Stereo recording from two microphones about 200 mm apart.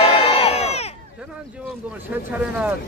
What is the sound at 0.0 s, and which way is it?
Crowd, 30° left (ahead or behind).